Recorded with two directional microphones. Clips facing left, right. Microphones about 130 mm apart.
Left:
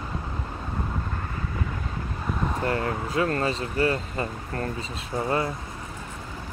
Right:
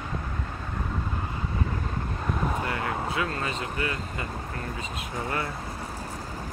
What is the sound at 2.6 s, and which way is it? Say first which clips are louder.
Speech: left 3 dB; 40° left (ahead or behind).